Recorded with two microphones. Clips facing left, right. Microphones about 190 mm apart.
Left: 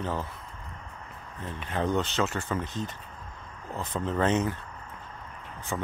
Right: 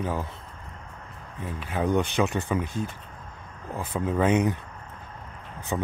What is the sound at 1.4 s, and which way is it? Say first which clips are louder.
Speech: right 2 dB; 10° right (ahead or behind).